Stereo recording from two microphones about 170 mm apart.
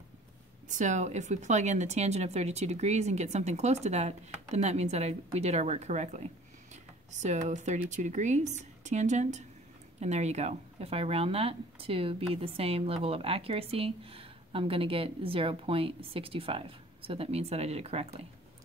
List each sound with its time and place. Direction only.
0.7 s a woman's voice: 45° right (ahead or behind)